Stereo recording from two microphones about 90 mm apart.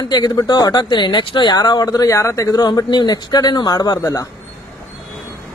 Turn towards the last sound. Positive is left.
turn(degrees=50)  # may be behind; listen again after turning